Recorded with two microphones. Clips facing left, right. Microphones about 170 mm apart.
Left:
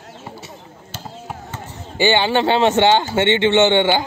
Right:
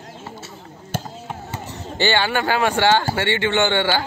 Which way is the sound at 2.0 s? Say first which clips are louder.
Left 4 dB; 20° left (ahead or behind).